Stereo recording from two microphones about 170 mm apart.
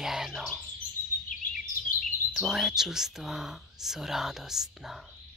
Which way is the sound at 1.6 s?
50° left (ahead or behind).